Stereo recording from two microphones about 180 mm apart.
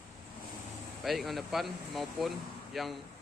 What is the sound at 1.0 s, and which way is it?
Speech, centre (ahead or behind).